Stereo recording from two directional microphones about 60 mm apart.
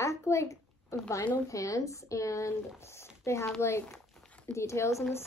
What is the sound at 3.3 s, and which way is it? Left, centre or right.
A child's voice, left.